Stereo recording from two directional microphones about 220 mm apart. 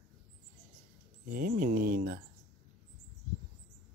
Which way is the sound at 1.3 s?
40° right (ahead or behind).